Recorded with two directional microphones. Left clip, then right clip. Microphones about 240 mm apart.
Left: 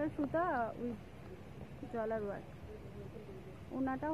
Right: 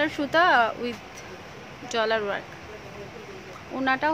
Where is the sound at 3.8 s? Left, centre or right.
Centre.